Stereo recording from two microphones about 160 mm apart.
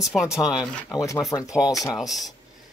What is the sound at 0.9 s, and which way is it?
Speech, 20° left (ahead or behind).